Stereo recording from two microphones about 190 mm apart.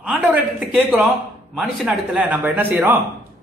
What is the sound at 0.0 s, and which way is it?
A man's voice, centre (ahead or behind).